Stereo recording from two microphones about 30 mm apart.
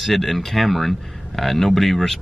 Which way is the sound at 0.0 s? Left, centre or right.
Centre.